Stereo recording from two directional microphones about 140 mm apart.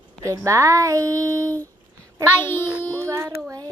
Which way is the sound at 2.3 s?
15° left (ahead or behind).